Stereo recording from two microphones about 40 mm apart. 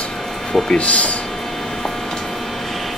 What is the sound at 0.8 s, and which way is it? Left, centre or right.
Speech, left.